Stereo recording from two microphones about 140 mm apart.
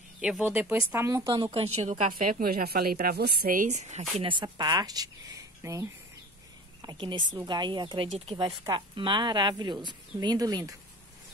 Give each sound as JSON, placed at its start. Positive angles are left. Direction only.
{"t": 0.2, "sound": "speech", "side_deg": -10}
{"t": 1.4, "sound": "a woman's voice", "side_deg": -40}
{"t": 2.1, "sound": "a woman's voice", "side_deg": -90}
{"t": 4.2, "sound": "speech", "side_deg": -35}